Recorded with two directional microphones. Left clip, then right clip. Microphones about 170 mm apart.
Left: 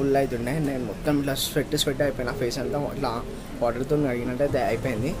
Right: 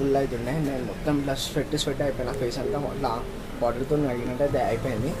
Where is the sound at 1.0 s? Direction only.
15° left (ahead or behind).